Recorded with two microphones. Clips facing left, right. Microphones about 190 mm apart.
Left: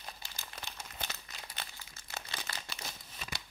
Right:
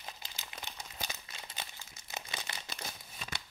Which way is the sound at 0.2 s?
20° right (ahead or behind).